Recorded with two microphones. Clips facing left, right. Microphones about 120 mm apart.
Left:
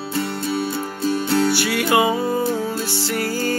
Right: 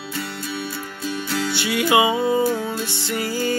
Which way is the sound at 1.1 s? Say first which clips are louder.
Left 7 dB; 40° left (ahead or behind).